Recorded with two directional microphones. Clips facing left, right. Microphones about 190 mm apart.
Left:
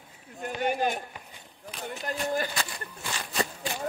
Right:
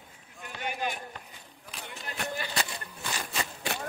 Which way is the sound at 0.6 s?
45° left (ahead or behind).